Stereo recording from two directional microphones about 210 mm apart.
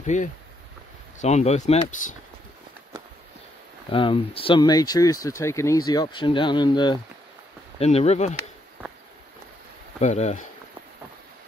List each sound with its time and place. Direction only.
0.0 s speech: 35° left (ahead or behind)
3.9 s speech: 25° left (ahead or behind)
9.9 s speech: 30° left (ahead or behind)